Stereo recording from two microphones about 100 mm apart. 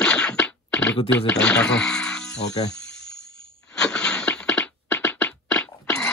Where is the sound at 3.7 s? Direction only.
10° left (ahead or behind).